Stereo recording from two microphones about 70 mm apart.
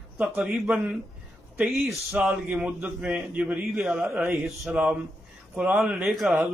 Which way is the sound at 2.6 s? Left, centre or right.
Centre.